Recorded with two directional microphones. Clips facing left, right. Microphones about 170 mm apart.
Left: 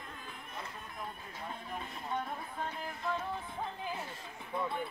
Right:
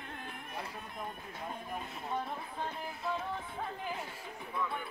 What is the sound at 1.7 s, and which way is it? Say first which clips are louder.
Music: even; 5° right (ahead or behind).